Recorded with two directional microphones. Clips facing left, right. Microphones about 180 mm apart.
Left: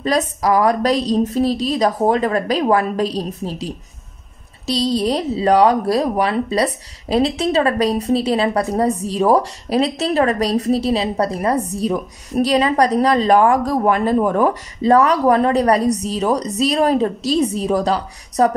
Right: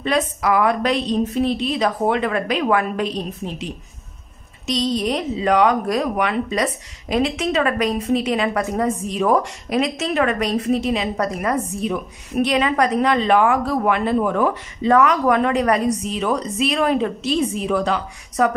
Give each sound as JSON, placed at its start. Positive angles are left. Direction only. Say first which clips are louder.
{"t": 0.0, "sound": "speech", "louder": "left 2 dB", "side_deg": 35}